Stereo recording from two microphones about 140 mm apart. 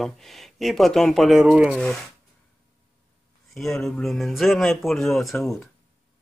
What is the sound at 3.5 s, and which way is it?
Speech, centre (ahead or behind).